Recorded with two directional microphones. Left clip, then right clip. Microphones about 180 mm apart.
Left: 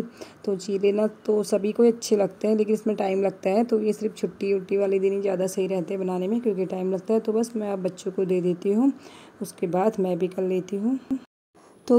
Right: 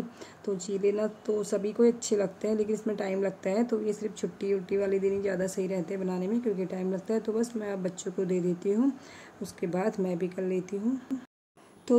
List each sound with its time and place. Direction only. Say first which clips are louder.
0.2 s a woman's voice: left 5 dB; 30° left (ahead or behind)
11.1 s speech: left 6 dB; centre (ahead or behind)
11.9 s speech: left 5 dB; 25° left (ahead or behind)